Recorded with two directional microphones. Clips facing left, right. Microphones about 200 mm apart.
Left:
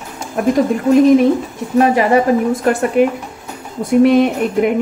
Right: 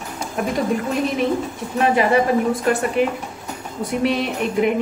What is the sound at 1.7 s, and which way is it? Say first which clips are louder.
A woman's voice: left 5 dB; 45° left (ahead or behind).